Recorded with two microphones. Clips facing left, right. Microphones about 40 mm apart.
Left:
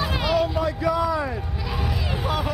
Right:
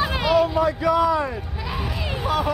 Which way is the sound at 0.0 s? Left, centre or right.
Centre.